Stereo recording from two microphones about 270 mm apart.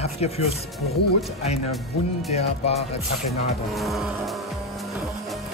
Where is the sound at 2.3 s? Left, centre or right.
Left.